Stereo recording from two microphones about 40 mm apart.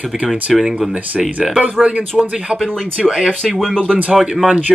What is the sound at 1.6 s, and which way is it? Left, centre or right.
Speech, right.